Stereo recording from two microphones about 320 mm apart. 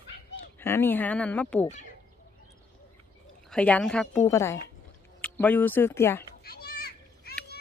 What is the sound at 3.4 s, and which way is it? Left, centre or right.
Speech, centre.